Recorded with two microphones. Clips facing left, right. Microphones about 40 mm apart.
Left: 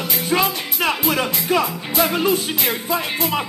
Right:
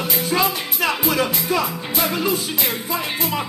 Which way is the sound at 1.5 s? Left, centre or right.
Left.